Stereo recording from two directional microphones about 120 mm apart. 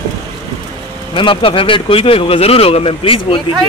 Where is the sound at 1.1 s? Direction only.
45° left (ahead or behind).